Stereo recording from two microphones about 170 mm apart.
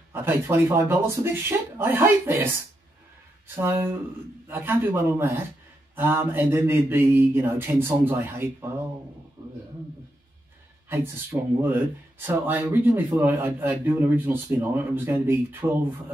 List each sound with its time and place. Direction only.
0.1 s speech: 15° right (ahead or behind)
3.5 s speech: 15° right (ahead or behind)
9.4 s a sound: 20° right (ahead or behind)
10.9 s speech: 10° right (ahead or behind)